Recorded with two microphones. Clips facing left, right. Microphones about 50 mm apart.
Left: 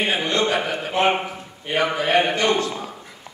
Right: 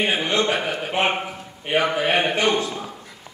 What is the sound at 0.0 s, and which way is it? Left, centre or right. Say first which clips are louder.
A man's voice: even; centre.